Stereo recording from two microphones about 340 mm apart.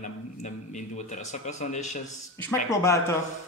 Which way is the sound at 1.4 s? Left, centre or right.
Left.